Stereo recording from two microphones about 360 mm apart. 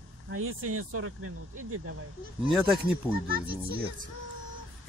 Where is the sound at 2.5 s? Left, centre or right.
Centre.